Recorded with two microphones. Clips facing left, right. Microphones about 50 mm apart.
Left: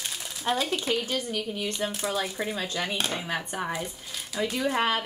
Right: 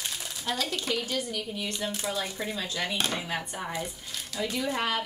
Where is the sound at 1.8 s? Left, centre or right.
Centre.